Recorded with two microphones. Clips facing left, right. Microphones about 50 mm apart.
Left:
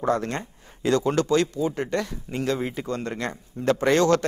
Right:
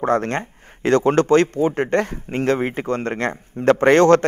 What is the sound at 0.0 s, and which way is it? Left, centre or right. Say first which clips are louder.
Speech: right 5 dB; right.